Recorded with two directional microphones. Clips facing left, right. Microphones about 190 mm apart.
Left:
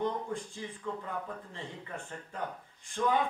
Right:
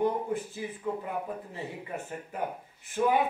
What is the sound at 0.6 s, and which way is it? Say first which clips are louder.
Speech: right 5 dB; 15° right (ahead or behind).